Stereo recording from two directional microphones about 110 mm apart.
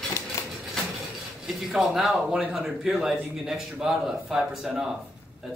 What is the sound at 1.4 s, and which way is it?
Speech, 5° right (ahead or behind).